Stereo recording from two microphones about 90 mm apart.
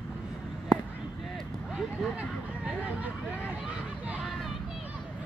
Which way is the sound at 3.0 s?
15° right (ahead or behind).